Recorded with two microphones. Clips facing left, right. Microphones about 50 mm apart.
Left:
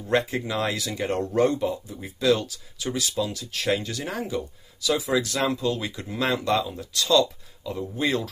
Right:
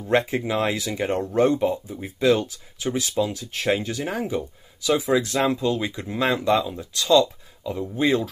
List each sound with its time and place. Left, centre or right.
0.0 s speech: right
6.6 s speech: centre
6.9 s speech: right